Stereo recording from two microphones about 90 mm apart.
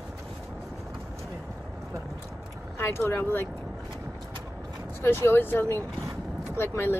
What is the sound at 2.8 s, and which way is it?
Speech, 30° left (ahead or behind).